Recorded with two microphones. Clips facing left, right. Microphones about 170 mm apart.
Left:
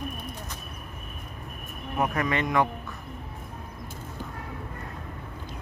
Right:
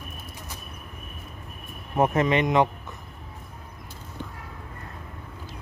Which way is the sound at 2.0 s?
25° right (ahead or behind).